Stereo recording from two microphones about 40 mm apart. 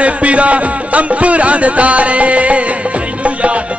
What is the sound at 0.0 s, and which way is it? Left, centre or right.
Speech, right.